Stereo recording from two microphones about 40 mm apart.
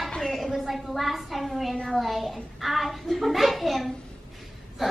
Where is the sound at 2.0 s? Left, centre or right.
Centre.